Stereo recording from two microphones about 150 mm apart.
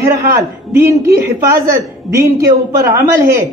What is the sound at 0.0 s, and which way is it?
A man's voice, 20° right (ahead or behind).